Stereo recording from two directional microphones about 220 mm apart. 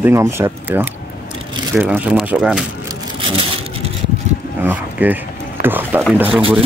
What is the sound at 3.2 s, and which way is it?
Vehicle, 25° right (ahead or behind).